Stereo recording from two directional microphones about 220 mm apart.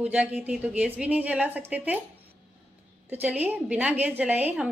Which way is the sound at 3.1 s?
5° right (ahead or behind).